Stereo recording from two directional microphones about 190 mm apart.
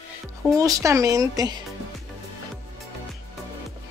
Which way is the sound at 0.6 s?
20° right (ahead or behind).